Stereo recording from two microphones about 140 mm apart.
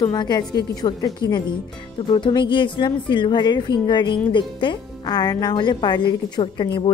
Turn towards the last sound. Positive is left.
turn(degrees=35)  # may be behind; listen again after turning